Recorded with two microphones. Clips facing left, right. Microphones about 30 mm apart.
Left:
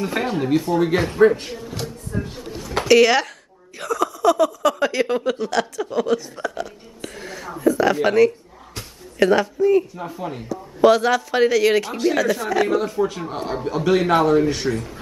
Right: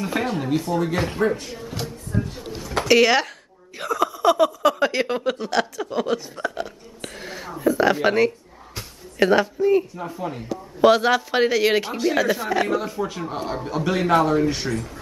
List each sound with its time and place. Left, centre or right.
0.1 s speech: centre
1.2 s speech: left
1.6 s speech: centre
2.6 s a sound: centre
2.9 s speech: centre
6.6 s hiccup: centre
7.6 s speech: centre
8.7 s a sound: centre
9.9 s speech: centre
10.8 s speech: centre
11.9 s speech: centre
12.2 s speech: centre
12.6 s speech: centre